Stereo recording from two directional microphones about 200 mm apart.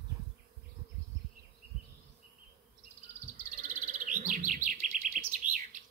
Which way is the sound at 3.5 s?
40° right (ahead or behind).